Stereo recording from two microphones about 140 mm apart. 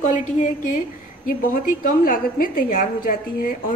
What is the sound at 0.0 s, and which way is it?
Speech, 60° left (ahead or behind).